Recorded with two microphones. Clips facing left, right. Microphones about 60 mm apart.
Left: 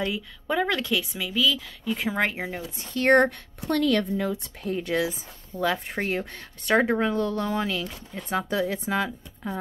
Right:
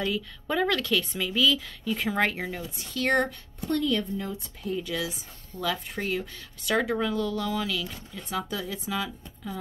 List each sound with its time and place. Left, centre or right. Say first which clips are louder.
0.0 s speech: even; centre
1.0 s speech: even; centre
2.0 s speech: even; centre
2.7 s speech: left 7 dB; left
3.3 s a woman's voice: left 2 dB; left
4.7 s speech: left 6 dB; left